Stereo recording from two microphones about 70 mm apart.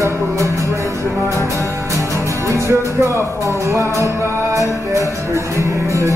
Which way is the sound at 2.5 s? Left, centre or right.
Right.